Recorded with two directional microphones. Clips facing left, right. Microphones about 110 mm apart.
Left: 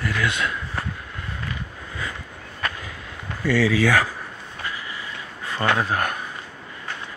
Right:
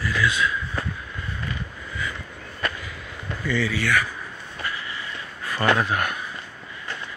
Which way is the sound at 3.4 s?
90° left.